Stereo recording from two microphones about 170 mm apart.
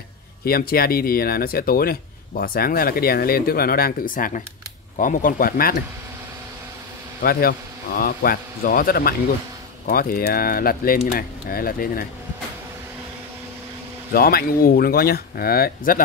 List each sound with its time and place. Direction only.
0.5 s speech: 60° left (ahead or behind)
7.2 s speech: 55° left (ahead or behind)
14.1 s speech: 60° left (ahead or behind)